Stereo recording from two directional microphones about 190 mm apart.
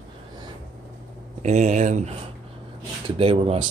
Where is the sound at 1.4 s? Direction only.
35° right (ahead or behind).